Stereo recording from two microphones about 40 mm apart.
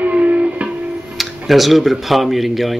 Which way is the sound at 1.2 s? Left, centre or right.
Centre.